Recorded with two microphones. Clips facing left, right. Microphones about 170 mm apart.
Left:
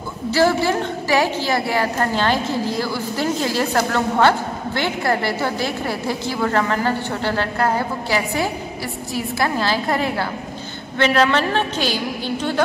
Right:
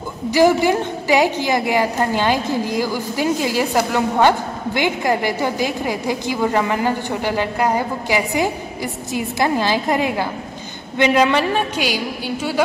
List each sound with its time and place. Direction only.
0.3 s a woman's voice: 15° right (ahead or behind)